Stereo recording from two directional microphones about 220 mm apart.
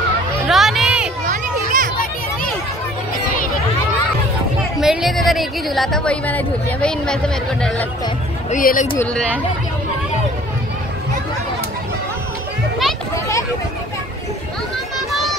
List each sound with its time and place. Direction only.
0.5 s music: centre (ahead or behind)
1.2 s children playing: 35° right (ahead or behind)
4.7 s a woman's voice: centre (ahead or behind)
8.5 s speech: 35° left (ahead or behind)
9.0 s speech: 5° left (ahead or behind)